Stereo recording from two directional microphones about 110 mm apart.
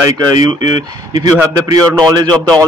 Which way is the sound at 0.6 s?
40° right (ahead or behind).